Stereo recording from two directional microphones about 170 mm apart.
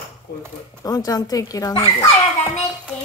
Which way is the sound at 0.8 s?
20° left (ahead or behind).